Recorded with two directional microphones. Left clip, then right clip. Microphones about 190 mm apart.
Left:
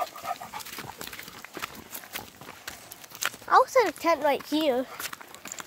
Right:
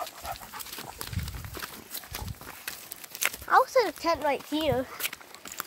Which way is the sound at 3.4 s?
5° left (ahead or behind).